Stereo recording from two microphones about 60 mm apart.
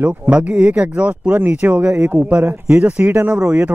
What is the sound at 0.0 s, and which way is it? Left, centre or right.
Speech, right.